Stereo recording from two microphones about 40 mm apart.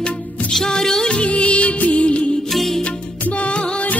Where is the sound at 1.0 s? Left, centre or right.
Left.